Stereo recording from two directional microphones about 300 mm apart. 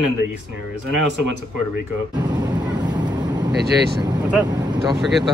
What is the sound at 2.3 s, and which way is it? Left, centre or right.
Vehicle, centre.